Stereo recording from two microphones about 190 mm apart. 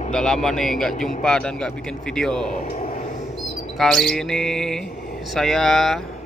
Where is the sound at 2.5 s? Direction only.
40° left (ahead or behind).